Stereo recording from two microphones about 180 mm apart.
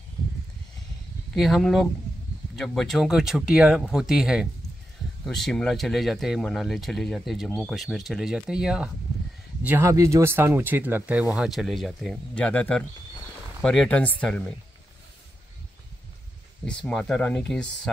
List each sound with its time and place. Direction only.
1.3 s speech: centre (ahead or behind)
16.6 s speech: 5° left (ahead or behind)